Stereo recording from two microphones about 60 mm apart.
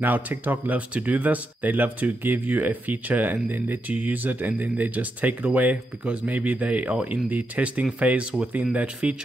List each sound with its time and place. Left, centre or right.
0.0 s speech: right